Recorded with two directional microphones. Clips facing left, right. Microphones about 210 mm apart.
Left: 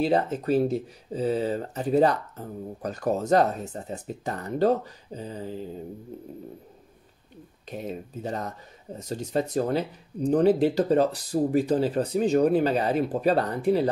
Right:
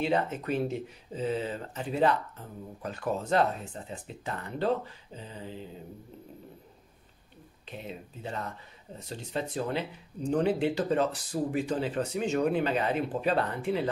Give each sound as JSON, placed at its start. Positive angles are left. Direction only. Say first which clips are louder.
{"t": 0.0, "sound": "speech", "louder": "left 5 dB", "side_deg": 35}
{"t": 7.6, "sound": "speech", "louder": "left 7 dB", "side_deg": 45}